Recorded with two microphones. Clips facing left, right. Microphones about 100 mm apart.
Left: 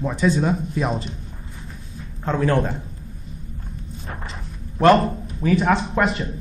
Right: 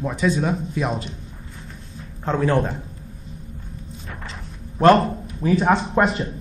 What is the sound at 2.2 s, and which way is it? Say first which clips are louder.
Speech: even; 15° right (ahead or behind).